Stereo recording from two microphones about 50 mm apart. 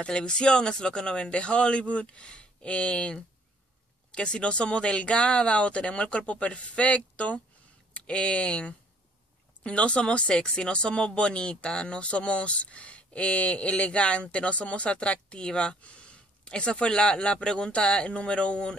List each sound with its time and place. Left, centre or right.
0.0 s speech: centre